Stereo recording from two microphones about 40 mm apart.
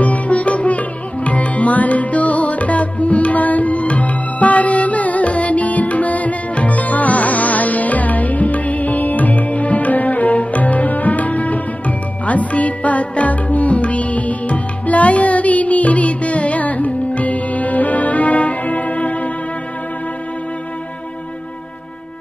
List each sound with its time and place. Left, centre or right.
0.0 s music: left